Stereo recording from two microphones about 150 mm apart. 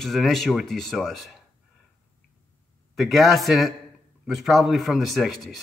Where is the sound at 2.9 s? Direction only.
Centre (ahead or behind).